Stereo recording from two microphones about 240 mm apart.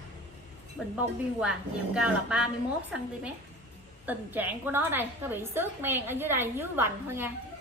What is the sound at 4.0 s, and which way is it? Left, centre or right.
A woman's voice, centre.